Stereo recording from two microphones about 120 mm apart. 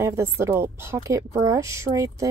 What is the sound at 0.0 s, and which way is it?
A woman's voice, 20° right (ahead or behind).